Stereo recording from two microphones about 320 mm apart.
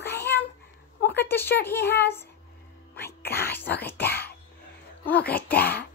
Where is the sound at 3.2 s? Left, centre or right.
Left.